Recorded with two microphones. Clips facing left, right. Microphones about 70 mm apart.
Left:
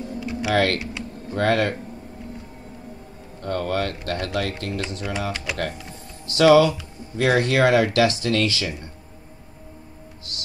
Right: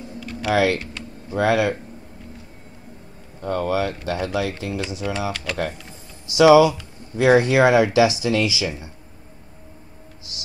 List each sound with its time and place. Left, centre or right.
0.2 s typing: centre
0.5 s speech: centre
3.3 s speech: centre
5.3 s speech: centre
6.2 s speech: centre